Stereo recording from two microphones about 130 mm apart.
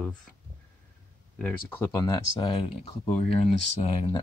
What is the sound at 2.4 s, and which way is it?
Speech, 40° left (ahead or behind).